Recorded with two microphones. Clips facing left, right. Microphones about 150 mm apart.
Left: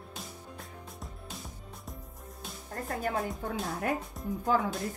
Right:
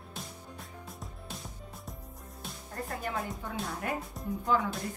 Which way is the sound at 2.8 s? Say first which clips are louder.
Left 4 dB; 45° left (ahead or behind).